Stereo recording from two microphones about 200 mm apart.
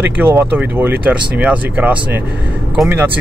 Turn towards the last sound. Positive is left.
turn(degrees=-10)  # may be behind; listen again after turning